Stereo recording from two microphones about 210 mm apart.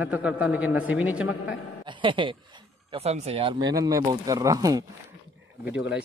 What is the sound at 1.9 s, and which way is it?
Speech, 25° right (ahead or behind).